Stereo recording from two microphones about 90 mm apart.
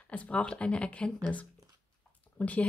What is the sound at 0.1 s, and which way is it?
Speech, 15° left (ahead or behind).